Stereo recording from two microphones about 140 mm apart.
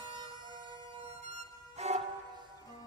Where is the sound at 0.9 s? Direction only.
50° right (ahead or behind).